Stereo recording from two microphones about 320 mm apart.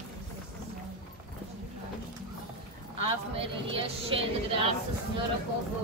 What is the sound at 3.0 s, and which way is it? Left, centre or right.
Speech, centre.